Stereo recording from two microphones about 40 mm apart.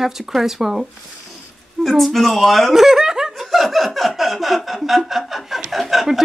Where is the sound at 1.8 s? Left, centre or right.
Centre.